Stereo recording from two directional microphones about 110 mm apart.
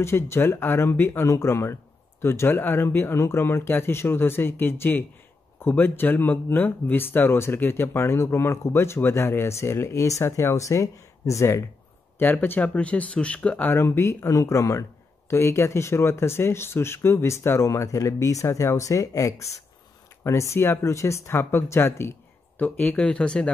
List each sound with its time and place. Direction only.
0.0 s speech: 20° left (ahead or behind)